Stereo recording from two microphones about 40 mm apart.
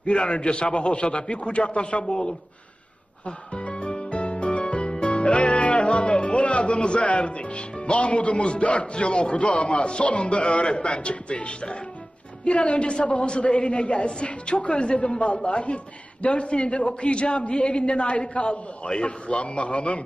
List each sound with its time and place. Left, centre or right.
0.0 s a woman's voice: left